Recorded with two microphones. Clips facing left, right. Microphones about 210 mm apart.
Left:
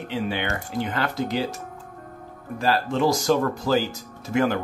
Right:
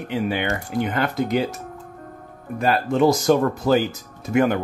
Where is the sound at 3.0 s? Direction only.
20° right (ahead or behind).